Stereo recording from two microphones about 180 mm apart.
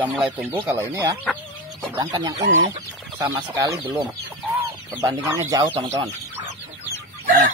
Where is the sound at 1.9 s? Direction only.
20° right (ahead or behind).